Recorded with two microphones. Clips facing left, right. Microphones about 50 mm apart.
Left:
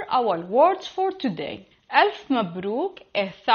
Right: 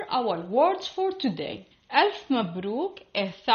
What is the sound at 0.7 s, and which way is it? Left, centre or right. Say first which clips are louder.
Speech: left 2 dB; centre.